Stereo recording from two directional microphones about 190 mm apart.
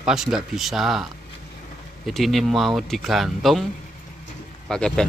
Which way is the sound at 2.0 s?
Centre (ahead or behind).